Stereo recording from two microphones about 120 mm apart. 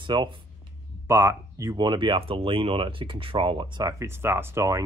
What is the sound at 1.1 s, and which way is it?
Speech, 25° right (ahead or behind).